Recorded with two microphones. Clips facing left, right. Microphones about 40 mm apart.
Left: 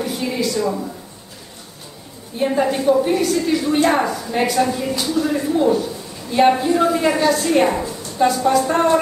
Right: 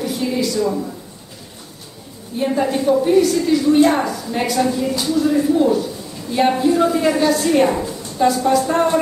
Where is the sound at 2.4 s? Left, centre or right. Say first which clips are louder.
Even; centre.